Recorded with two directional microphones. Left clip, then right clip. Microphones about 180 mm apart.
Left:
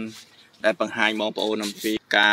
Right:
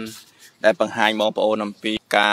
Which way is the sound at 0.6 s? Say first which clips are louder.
Right 4 dB; 30° right (ahead or behind).